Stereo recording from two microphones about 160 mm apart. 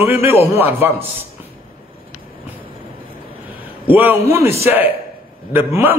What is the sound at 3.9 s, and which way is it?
A man's voice, 10° right (ahead or behind).